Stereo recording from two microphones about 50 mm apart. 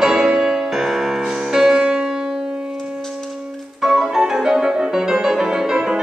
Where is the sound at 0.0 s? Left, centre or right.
Centre.